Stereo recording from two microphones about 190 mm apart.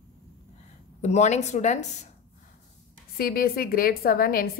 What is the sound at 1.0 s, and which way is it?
Speech, 35° left (ahead or behind).